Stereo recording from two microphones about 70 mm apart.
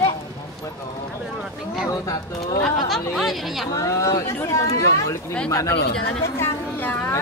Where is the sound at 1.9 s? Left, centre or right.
Left.